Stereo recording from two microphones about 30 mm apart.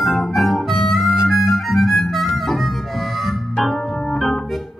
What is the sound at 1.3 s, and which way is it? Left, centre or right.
Harmonica, centre.